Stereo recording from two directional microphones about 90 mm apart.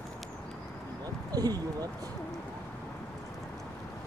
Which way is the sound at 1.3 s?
45° right (ahead or behind).